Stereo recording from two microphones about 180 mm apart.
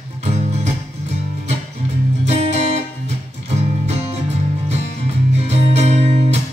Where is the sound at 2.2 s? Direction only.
40° right (ahead or behind).